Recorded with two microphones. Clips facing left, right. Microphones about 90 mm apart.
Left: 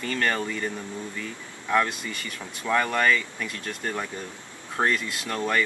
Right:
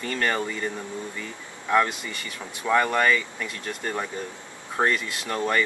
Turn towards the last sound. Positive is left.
turn(degrees=-10)  # may be behind; listen again after turning